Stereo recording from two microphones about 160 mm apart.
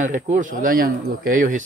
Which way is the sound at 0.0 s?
55° right (ahead or behind).